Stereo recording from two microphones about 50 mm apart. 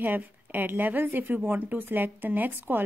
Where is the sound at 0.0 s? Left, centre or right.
Right.